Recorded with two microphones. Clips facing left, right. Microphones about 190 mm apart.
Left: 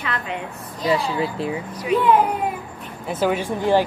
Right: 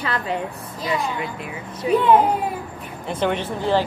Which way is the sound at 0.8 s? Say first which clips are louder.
Left 4 dB; 30° left (ahead or behind).